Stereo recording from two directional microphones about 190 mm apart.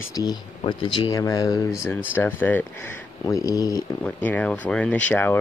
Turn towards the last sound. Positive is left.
turn(degrees=10)  # may be behind; listen again after turning